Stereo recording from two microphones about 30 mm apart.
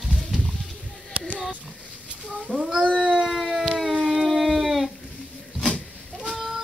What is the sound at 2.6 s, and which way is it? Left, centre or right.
Cat, right.